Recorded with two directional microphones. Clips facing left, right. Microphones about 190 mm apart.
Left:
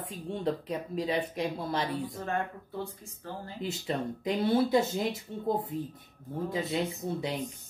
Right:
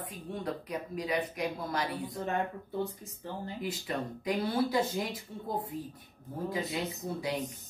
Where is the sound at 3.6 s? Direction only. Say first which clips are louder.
Left 4 dB; 25° left (ahead or behind).